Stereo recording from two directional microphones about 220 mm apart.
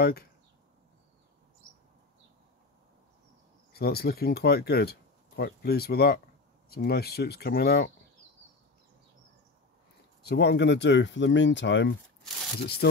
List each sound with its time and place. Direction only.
0.0 s speech: 45° left (ahead or behind)
3.7 s speech: 45° left (ahead or behind)
10.2 s speech: 50° left (ahead or behind)